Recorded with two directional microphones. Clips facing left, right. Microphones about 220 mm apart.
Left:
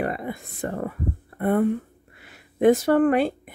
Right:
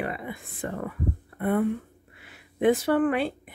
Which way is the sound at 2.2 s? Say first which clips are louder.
Left 4 dB; 45° left (ahead or behind).